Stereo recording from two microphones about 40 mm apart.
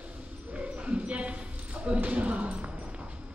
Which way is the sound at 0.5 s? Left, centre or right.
Right.